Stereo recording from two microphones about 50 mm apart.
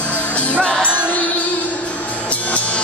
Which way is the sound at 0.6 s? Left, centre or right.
Centre.